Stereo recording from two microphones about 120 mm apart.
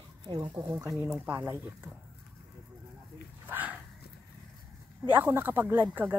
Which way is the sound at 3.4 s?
15° right (ahead or behind).